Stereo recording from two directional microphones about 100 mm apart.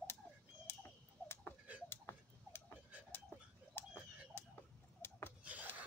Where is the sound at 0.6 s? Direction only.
25° left (ahead or behind).